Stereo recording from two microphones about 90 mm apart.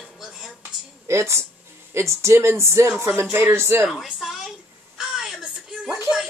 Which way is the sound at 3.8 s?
5° right (ahead or behind).